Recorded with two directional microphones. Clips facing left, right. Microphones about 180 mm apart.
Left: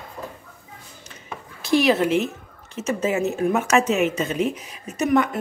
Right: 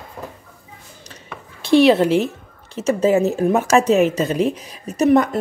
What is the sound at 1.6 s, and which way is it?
A woman's voice, 30° right (ahead or behind).